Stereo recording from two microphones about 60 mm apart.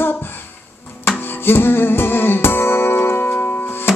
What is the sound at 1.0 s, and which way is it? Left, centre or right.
Music, left.